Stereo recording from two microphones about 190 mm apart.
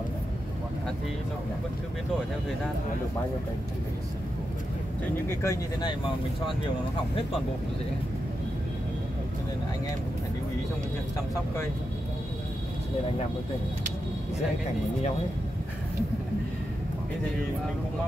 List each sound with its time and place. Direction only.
5.2 s speech: 15° left (ahead or behind)